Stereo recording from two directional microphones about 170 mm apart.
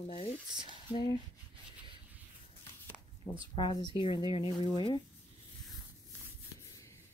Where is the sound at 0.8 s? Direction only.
25° left (ahead or behind).